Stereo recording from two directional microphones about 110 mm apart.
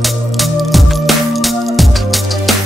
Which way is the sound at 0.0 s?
Centre (ahead or behind).